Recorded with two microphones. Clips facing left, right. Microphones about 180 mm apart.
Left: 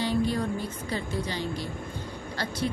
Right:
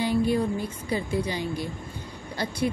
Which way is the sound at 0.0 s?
10° right (ahead or behind).